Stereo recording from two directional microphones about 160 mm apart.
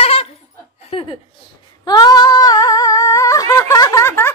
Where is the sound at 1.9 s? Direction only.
25° left (ahead or behind).